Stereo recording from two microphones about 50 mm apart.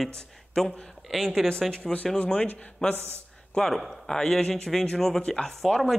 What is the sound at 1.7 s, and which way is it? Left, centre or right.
Speech, centre.